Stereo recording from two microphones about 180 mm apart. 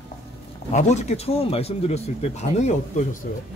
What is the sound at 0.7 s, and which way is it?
Speech, 40° left (ahead or behind).